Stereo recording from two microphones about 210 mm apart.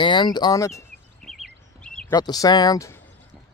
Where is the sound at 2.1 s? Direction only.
20° left (ahead or behind).